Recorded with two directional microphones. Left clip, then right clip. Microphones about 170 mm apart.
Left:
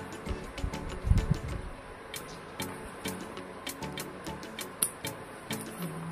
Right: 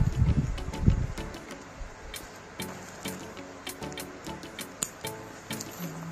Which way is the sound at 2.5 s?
Centre (ahead or behind).